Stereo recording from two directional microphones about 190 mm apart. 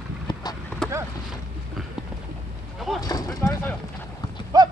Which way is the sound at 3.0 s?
20° left (ahead or behind).